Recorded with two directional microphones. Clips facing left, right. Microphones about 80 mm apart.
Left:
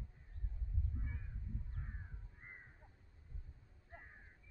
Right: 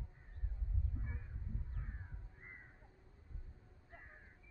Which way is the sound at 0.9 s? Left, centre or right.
Centre.